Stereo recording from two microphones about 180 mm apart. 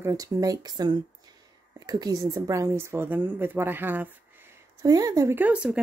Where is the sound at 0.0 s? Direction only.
20° right (ahead or behind).